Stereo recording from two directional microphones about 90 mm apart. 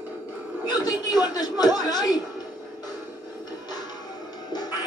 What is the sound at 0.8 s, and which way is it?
Chuckle, 50° left (ahead or behind).